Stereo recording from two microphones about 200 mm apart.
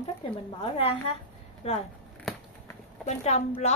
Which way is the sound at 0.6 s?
30° left (ahead or behind).